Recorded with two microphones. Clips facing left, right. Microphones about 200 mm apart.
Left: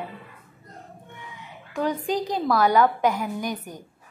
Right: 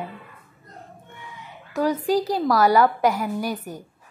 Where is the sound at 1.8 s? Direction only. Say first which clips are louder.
Right 4 dB; 5° right (ahead or behind).